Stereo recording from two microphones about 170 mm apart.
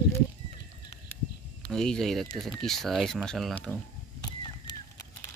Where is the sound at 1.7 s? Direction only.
5° left (ahead or behind).